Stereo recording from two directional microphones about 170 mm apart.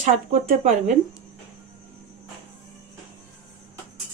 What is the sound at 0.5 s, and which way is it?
Speech, 45° right (ahead or behind).